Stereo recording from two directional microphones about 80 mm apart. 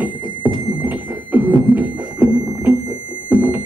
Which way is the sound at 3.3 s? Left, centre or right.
Right.